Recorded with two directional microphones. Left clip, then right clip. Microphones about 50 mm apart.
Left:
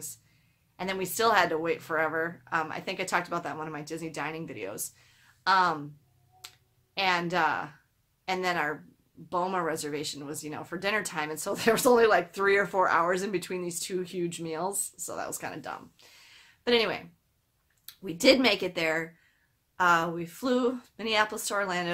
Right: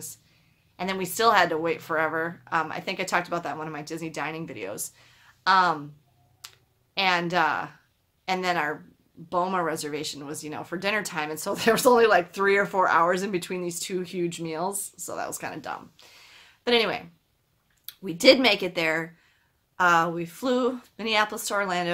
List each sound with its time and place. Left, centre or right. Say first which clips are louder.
0.7 s speech: right 3 dB; right
6.4 s finger snapping: right 2 dB; right
8.3 s speech: right 3 dB; right